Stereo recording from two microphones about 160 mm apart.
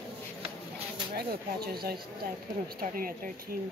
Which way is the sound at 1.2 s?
70° right (ahead or behind).